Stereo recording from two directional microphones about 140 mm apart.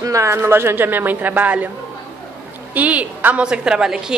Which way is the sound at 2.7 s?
10° right (ahead or behind).